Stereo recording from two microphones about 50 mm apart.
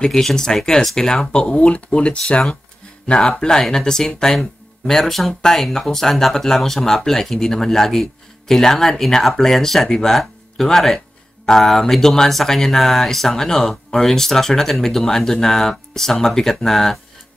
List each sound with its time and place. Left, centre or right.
0.0 s speech: centre
1.5 s speech: left; by 17.0 s centre